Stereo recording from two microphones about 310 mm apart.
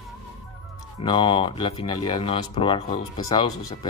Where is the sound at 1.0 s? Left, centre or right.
Centre.